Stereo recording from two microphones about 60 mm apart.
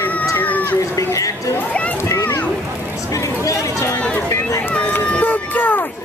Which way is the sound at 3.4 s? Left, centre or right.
Left.